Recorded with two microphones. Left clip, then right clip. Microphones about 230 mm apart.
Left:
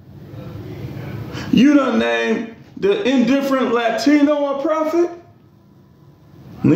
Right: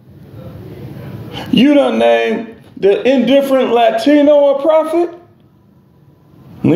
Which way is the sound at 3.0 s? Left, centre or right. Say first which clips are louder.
Right 6 dB; left.